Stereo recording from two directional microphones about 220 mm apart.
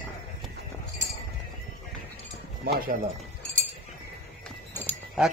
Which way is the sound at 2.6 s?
40° right (ahead or behind).